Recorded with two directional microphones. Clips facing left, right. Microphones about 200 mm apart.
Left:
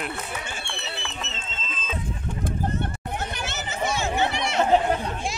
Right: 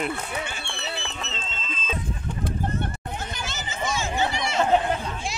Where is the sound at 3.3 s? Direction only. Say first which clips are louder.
Left 2 dB; 65° left (ahead or behind).